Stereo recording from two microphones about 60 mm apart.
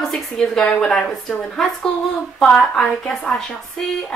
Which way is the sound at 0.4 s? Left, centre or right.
Centre.